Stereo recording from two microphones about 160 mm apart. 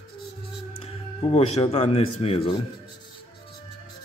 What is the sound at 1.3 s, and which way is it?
A man's voice, 40° left (ahead or behind).